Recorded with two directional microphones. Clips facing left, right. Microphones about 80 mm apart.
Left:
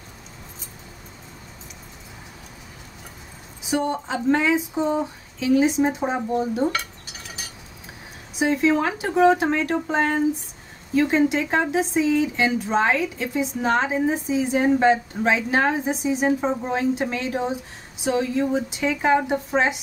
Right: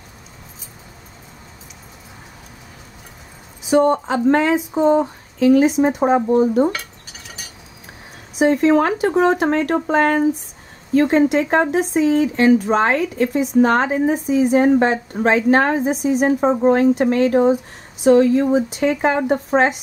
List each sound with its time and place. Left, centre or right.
3.7 s speech: right
8.4 s speech: right